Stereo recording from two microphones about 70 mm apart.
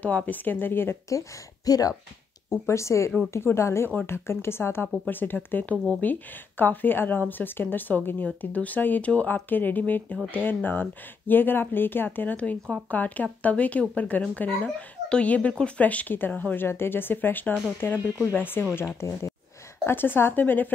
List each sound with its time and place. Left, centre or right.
0.0 s speech: left
1.0 s speech: left
2.5 s speech: left
18.8 s speech: left
19.9 s speech: left